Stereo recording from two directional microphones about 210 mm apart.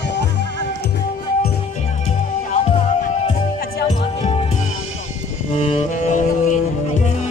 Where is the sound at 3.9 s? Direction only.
30° left (ahead or behind).